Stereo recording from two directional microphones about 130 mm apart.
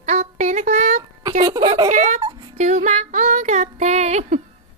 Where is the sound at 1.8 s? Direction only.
60° right (ahead or behind).